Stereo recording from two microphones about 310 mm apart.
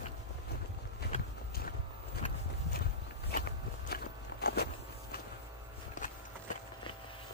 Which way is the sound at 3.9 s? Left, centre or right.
Left.